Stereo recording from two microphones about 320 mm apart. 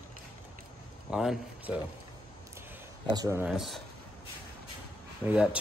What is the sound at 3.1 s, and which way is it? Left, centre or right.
Speech, centre.